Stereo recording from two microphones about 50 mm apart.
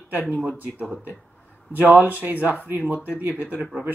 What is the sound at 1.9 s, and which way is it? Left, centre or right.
Speech, right.